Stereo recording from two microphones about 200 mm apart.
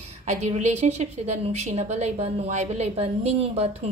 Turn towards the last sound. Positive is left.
turn(degrees=-30)  # may be behind; listen again after turning